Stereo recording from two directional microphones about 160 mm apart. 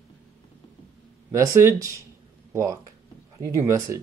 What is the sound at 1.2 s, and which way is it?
Speech, 20° right (ahead or behind).